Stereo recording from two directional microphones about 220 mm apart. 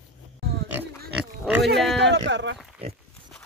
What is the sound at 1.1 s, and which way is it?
Pig, 5° right (ahead or behind).